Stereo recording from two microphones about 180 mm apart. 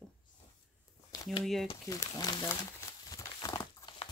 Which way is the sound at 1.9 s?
20° left (ahead or behind).